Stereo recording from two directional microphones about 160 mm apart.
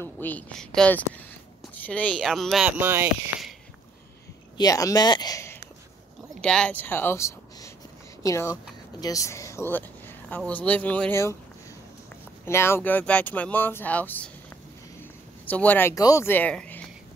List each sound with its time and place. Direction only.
0.0 s speech: 10° left (ahead or behind)
2.8 s speech: 15° right (ahead or behind)
4.6 s speech: 20° left (ahead or behind)
6.4 s speech: 5° left (ahead or behind)
12.4 s speech: 15° left (ahead or behind)